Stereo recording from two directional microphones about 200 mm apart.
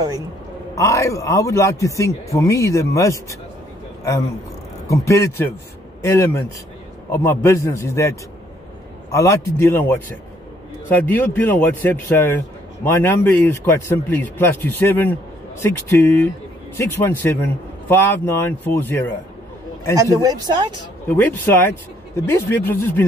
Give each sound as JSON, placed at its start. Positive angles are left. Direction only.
{"t": 0.7, "sound": "a man's voice", "side_deg": 15}
{"t": 20.0, "sound": "speech", "side_deg": -15}
{"t": 21.1, "sound": "speech", "side_deg": 10}